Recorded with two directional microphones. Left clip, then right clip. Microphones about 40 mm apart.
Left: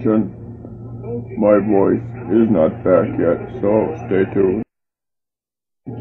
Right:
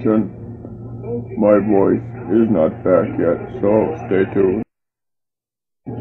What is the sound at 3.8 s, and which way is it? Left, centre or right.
Speech, centre.